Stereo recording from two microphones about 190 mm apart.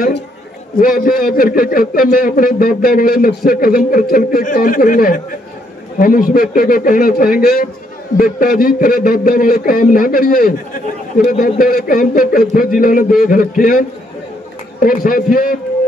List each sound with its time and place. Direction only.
0.7 s a man's voice: 50° left (ahead or behind)